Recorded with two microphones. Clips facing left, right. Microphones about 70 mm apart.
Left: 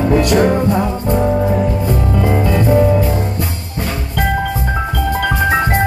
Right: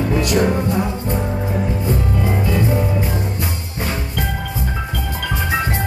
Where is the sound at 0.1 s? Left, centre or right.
Left.